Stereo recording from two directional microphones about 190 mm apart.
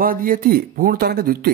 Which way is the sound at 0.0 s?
50° right (ahead or behind).